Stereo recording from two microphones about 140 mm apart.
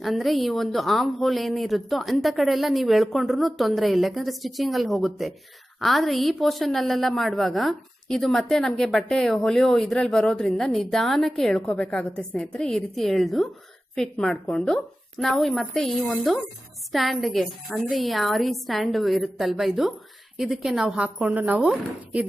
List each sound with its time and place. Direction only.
0.0 s a woman's voice: centre (ahead or behind)